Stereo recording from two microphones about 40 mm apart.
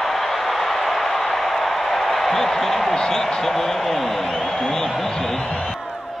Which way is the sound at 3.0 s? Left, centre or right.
Centre.